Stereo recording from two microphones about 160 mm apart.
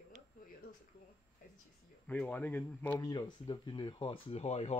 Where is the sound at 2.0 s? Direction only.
10° left (ahead or behind).